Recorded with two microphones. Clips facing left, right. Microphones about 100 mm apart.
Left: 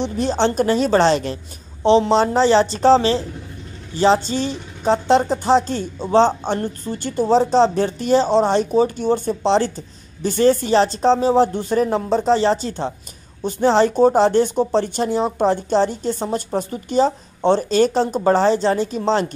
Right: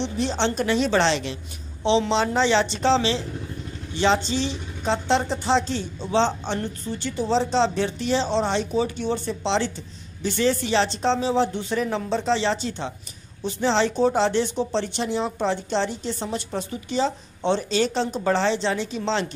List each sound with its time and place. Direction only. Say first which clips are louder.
0.0 s a woman's voice: left 5 dB; 45° left (ahead or behind)